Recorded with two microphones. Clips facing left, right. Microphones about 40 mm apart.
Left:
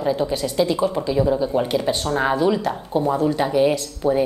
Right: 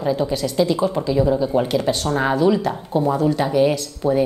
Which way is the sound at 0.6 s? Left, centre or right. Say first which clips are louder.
Right 1 dB; centre.